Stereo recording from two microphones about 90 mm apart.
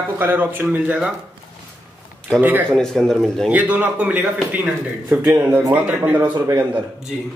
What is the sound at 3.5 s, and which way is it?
Speech, 15° right (ahead or behind).